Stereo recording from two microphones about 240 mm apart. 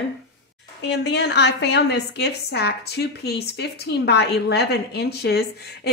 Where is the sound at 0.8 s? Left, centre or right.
Left.